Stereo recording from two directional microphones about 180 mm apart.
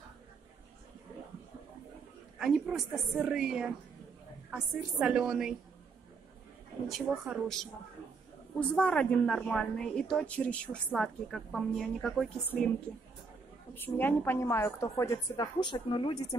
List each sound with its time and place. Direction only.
2.3 s a woman's voice: centre (ahead or behind)
6.9 s a woman's voice: centre (ahead or behind)
13.7 s a woman's voice: 10° left (ahead or behind); by 16.3 s 25° left (ahead or behind)